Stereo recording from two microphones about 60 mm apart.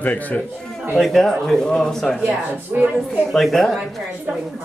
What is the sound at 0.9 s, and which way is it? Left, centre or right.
Speech, centre.